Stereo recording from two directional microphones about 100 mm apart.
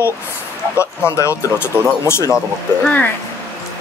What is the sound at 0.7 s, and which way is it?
Speech, 30° left (ahead or behind).